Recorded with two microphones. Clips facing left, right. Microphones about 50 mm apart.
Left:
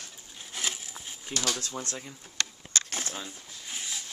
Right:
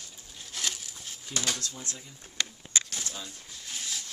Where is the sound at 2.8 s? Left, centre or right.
Left.